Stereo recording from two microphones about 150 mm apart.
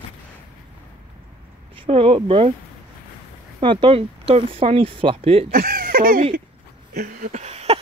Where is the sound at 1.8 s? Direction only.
35° right (ahead or behind).